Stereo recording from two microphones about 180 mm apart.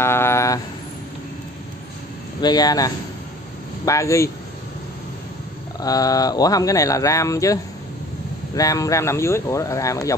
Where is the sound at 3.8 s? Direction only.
15° left (ahead or behind).